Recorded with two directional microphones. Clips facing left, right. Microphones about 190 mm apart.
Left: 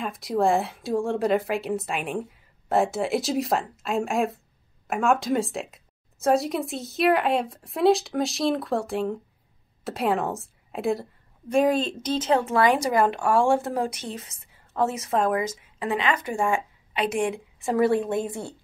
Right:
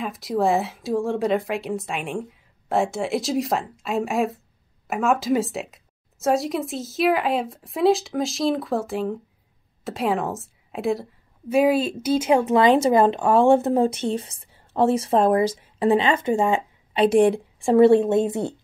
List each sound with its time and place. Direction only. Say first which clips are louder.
0.0 s a woman's voice: right 1 dB; centre (ahead or behind); by 18.5 s 25° right (ahead or behind)